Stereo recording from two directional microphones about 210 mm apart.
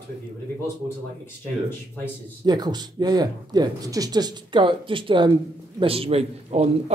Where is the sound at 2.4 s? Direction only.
20° right (ahead or behind).